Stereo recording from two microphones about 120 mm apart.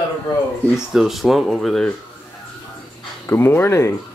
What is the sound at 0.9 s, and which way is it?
Speech, centre (ahead or behind).